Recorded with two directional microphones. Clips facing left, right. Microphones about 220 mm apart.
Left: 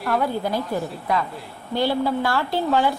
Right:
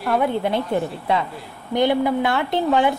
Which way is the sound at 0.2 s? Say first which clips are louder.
Right 3 dB; 25° right (ahead or behind).